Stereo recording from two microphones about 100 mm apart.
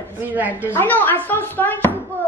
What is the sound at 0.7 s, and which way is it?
A woman's voice, 20° left (ahead or behind).